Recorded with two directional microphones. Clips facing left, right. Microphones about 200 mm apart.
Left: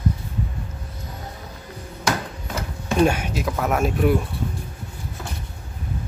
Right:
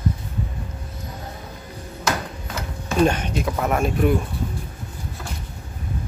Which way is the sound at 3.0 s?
10° left (ahead or behind).